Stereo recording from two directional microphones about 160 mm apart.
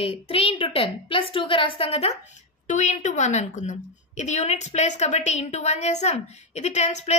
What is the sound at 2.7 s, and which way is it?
A woman's voice, 50° left (ahead or behind).